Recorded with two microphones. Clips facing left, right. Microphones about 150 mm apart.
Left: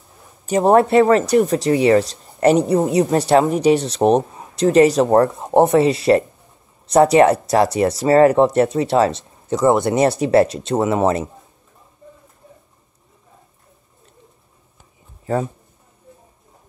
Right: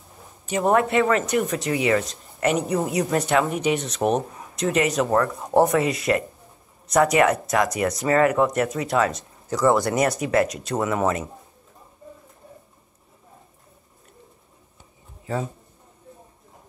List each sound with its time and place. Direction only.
0.5 s speech: 35° left (ahead or behind)